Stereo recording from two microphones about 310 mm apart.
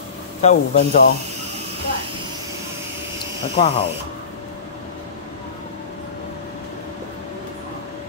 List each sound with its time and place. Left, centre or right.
0.4 s speech: left
3.5 s speech: centre